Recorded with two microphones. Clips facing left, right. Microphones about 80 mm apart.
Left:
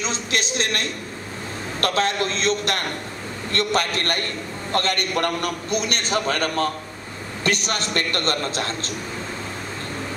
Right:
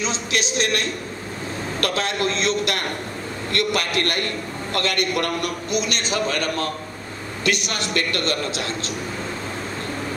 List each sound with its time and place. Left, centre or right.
0.0 s a man's voice: left